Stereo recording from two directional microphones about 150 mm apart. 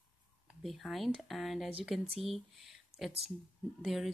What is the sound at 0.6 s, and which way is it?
Speech, centre (ahead or behind).